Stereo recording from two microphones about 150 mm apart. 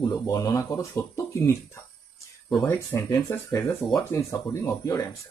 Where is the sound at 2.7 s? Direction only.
15° left (ahead or behind).